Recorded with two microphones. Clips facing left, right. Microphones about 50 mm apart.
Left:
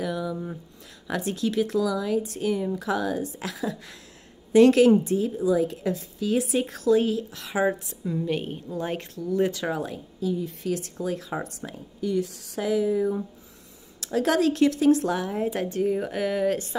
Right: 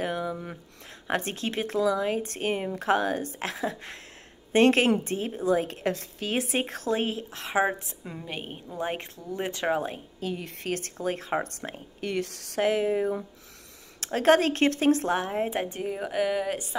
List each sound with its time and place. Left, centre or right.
0.0 s a sound: right
1.0 s a woman's voice: right
8.3 s speech: centre; by 9.9 s right
9.9 s a woman's voice: right
15.9 s a woman's voice: centre